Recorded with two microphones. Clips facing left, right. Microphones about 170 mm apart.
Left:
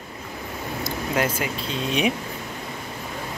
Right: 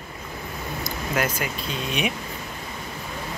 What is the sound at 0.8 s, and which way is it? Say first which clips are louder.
Speech: left 2 dB; 25° left (ahead or behind).